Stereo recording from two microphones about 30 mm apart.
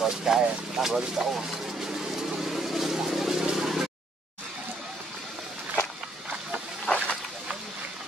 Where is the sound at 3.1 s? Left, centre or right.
Centre.